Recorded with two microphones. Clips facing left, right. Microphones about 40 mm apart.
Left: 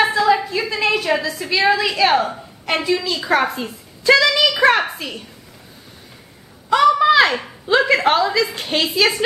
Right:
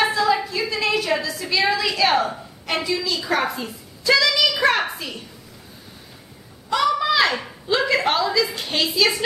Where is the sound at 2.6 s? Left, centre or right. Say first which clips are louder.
Left 4 dB; centre.